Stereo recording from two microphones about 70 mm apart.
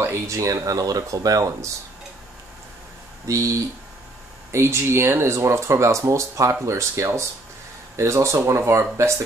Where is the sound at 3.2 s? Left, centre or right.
Right.